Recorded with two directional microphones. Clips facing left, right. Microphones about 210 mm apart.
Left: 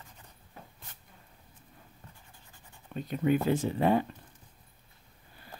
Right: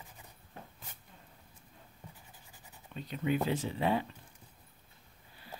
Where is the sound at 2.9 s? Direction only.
50° left (ahead or behind).